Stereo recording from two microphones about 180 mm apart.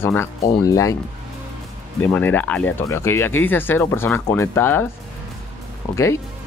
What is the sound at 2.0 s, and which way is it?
Speech, 10° left (ahead or behind).